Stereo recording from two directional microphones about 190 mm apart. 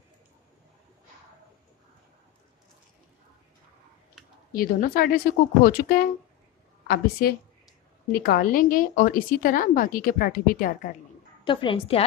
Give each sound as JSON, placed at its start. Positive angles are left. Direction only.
{"t": 4.6, "sound": "a woman's voice", "side_deg": 50}
{"t": 11.4, "sound": "a woman's voice", "side_deg": 25}